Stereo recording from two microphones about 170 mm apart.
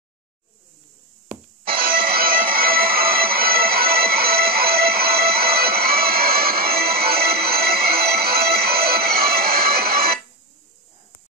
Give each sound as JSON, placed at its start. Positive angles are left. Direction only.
{"t": 1.8, "sound": "music", "side_deg": -60}